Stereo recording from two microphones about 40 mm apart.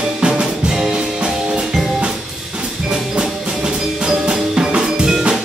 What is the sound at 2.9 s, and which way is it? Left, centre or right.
Music, centre.